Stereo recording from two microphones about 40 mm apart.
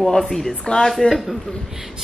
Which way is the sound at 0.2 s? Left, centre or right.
Centre.